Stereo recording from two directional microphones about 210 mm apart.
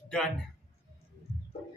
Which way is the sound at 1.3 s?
30° left (ahead or behind).